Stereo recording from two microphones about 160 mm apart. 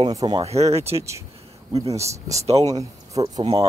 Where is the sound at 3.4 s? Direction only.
40° right (ahead or behind).